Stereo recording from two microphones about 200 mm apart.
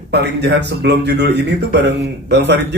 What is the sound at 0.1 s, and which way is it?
A man's voice, 55° right (ahead or behind).